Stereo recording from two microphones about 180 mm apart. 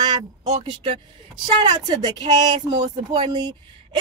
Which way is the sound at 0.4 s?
40° right (ahead or behind).